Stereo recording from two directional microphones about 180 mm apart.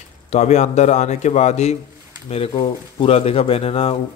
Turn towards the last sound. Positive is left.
turn(degrees=30)  # may be behind; listen again after turning